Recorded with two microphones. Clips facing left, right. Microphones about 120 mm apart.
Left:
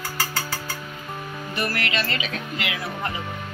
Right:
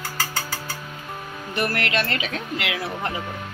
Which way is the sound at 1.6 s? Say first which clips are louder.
Right 3 dB; 60° right (ahead or behind).